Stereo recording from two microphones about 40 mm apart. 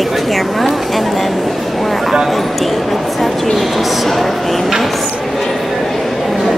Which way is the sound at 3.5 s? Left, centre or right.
Centre.